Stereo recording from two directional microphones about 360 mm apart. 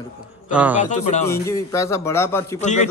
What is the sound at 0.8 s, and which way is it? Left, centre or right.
Speech, centre.